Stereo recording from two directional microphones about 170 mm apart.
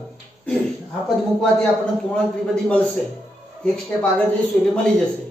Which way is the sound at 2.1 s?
5° left (ahead or behind).